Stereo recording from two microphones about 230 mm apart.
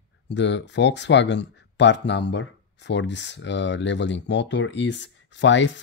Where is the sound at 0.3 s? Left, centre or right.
Left.